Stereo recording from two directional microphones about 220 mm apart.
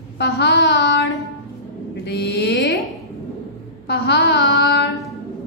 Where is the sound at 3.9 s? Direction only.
50° left (ahead or behind).